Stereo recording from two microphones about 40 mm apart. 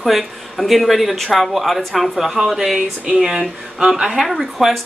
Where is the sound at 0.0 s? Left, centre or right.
Centre.